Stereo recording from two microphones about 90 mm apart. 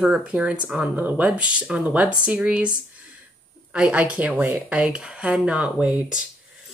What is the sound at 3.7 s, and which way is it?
A woman's voice, 15° right (ahead or behind).